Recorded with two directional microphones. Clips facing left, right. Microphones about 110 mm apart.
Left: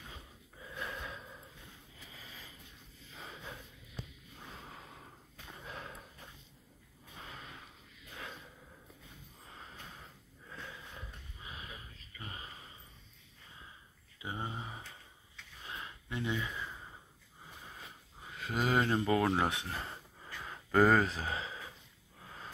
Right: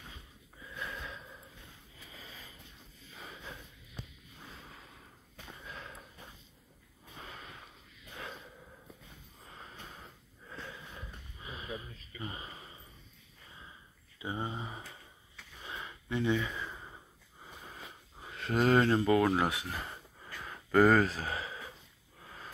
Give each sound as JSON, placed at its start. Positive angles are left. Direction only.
{"t": 0.7, "sound": "wheeze", "side_deg": 20}
{"t": 4.6, "sound": "snort", "side_deg": 30}
{"t": 5.7, "sound": "sniff", "side_deg": 20}
{"t": 7.2, "sound": "snort", "side_deg": 0}
{"t": 12.2, "sound": "a sound", "side_deg": -15}
{"t": 14.2, "sound": "a sound", "side_deg": -5}
{"t": 18.3, "sound": "speech", "side_deg": 5}
{"t": 19.2, "sound": "speech", "side_deg": 25}
{"t": 20.4, "sound": "speech", "side_deg": 10}
{"t": 22.2, "sound": "a sound", "side_deg": 10}